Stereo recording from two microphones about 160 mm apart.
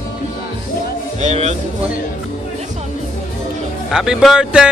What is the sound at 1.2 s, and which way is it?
Music, 45° right (ahead or behind).